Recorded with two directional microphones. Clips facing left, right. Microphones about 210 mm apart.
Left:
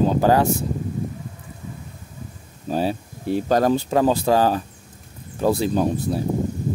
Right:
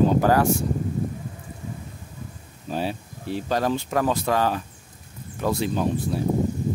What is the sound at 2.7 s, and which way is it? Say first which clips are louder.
Speech: left 5 dB; 40° left (ahead or behind).